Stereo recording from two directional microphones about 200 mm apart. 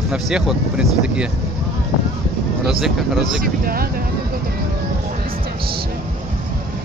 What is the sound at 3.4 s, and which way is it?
Speech, 45° right (ahead or behind).